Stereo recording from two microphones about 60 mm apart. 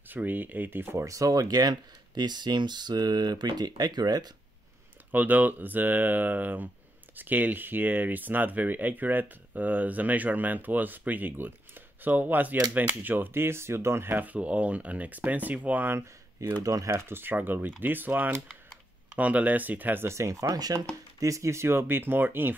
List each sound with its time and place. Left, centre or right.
0.1 s speech: right
0.9 s speech: right
3.5 s speech: right
5.1 s speech: right
14.1 s speech: right
16.6 s speech: right
17.0 s speech: right
20.1 s speech: right
21.2 s speech: right